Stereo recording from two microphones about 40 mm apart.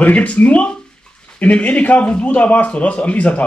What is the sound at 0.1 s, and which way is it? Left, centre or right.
A man's voice, left.